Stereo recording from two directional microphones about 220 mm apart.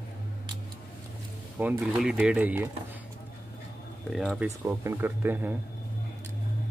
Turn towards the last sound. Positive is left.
turn(degrees=-10)  # may be behind; listen again after turning